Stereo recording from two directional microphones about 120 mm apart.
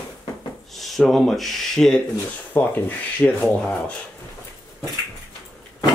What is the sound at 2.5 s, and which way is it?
Speech, 20° left (ahead or behind).